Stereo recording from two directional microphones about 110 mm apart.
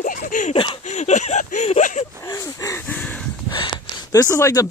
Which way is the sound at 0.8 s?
90° left.